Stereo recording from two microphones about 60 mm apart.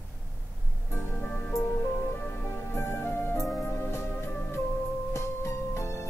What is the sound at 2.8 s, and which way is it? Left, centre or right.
Music, left.